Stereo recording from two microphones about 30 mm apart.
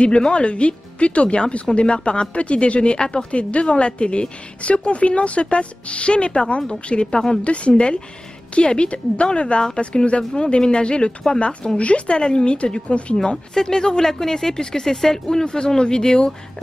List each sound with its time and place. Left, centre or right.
0.0 s a woman's voice: left
3.3 s a woman's voice: left
12.2 s a woman's voice: left